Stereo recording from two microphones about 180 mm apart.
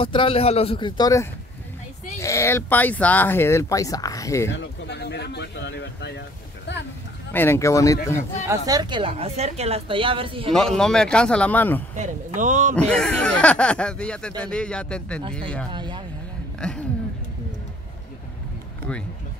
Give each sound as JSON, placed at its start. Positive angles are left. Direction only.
{"t": 0.0, "sound": "a man's voice", "side_deg": 30}
{"t": 4.5, "sound": "speech", "side_deg": 80}
{"t": 7.3, "sound": "speech", "side_deg": 15}
{"t": 8.5, "sound": "a woman's voice", "side_deg": -20}
{"t": 10.5, "sound": "speech", "side_deg": 5}
{"t": 12.0, "sound": "speech", "side_deg": -40}
{"t": 12.7, "sound": "speech", "side_deg": 5}
{"t": 15.7, "sound": "speech", "side_deg": -25}
{"t": 16.6, "sound": "speech", "side_deg": 5}